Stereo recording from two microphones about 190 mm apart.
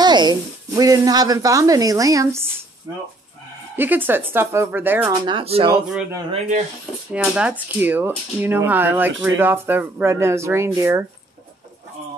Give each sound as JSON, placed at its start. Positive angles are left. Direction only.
{"t": 0.0, "sound": "speech", "side_deg": -20}
{"t": 3.7, "sound": "speech", "side_deg": -10}
{"t": 5.1, "sound": "speech", "side_deg": -25}
{"t": 7.1, "sound": "speech", "side_deg": -5}